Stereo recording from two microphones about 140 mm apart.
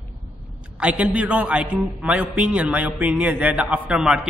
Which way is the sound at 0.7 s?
10° right (ahead or behind).